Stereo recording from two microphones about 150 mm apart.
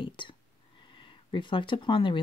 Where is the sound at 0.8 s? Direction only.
35° left (ahead or behind).